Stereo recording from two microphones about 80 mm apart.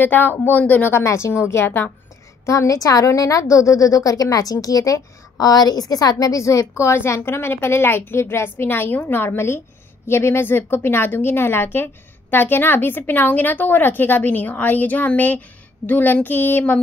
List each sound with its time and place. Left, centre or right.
0.0 s a woman's voice: left
0.9 s a woman's voice: left
2.4 s a woman's voice: left